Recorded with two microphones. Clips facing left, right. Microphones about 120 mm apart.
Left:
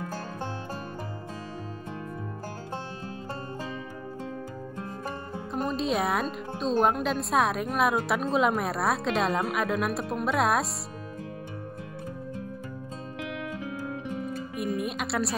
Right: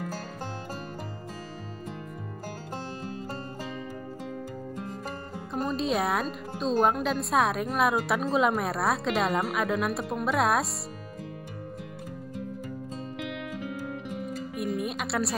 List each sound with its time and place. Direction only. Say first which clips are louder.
5.5 s speech: even; centre (ahead or behind)
14.6 s speech: left 1 dB; centre (ahead or behind)